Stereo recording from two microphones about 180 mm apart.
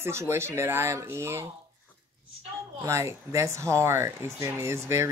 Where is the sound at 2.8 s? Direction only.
15° right (ahead or behind).